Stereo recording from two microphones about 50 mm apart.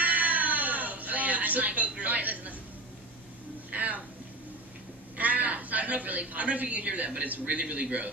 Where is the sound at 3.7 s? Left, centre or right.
Right.